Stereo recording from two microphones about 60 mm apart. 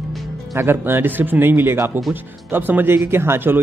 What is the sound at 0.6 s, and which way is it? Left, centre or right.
Speech, right.